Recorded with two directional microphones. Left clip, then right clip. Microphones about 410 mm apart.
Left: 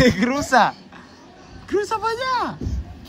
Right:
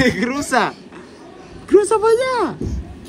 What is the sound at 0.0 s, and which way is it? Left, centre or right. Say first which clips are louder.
Speech: even; centre.